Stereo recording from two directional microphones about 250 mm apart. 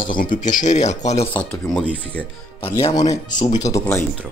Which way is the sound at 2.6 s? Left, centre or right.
Centre.